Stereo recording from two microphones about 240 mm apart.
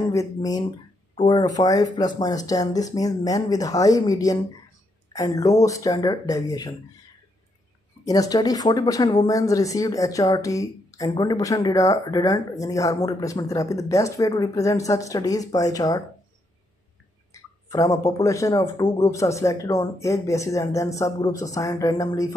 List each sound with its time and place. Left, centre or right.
0.1 s speech: centre
8.0 s speech: centre
17.3 s speech: centre